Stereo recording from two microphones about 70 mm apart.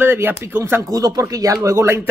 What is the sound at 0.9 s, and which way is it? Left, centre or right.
Speech, right.